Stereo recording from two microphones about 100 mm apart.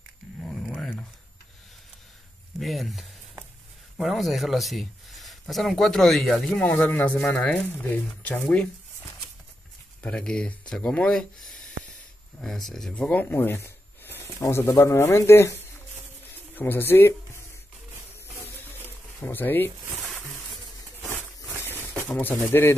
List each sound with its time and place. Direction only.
0.4 s a sound: 5° left (ahead or behind)
2.6 s speech: centre (ahead or behind)
10.0 s speech: 10° left (ahead or behind); by 15.5 s 25° left (ahead or behind)
16.5 s speech: 20° left (ahead or behind)
19.2 s speech: 20° left (ahead or behind)
22.2 s speech: 25° left (ahead or behind)